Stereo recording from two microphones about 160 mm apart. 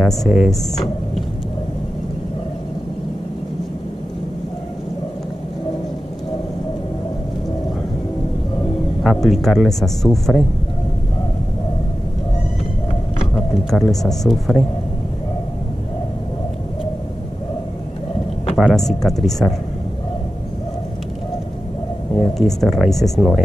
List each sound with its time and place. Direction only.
0.0 s speech: centre (ahead or behind)
9.0 s speech: centre (ahead or behind)
13.7 s speech: centre (ahead or behind)
18.6 s speech: centre (ahead or behind)
22.4 s speech: centre (ahead or behind)